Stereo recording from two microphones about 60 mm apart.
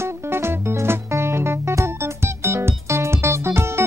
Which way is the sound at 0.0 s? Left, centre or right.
Right.